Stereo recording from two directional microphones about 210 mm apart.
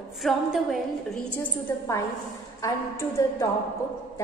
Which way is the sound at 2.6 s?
15° left (ahead or behind).